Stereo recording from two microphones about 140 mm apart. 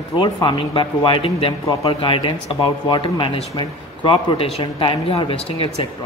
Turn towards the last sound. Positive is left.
turn(degrees=45)  # may be behind; listen again after turning